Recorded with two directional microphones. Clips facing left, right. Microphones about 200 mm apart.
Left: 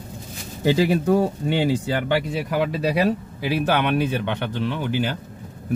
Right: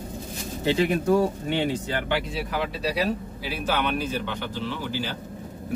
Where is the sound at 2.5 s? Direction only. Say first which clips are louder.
Left 6 dB; 60° left (ahead or behind).